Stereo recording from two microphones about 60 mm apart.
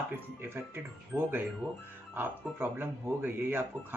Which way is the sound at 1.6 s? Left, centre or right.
Right.